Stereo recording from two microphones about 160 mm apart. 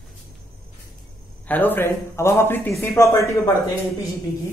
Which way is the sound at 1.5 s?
10° left (ahead or behind).